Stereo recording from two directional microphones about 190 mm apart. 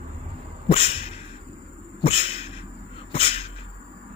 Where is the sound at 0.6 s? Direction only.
35° left (ahead or behind).